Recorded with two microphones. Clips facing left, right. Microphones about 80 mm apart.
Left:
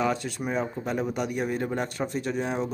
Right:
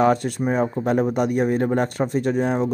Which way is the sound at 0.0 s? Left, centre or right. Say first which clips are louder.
Right 9 dB; right.